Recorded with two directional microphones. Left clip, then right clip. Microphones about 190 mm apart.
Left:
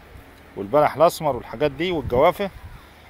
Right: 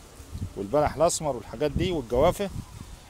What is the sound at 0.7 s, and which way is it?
Speech, 5° right (ahead or behind).